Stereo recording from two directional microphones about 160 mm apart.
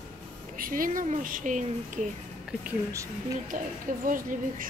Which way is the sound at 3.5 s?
55° right (ahead or behind).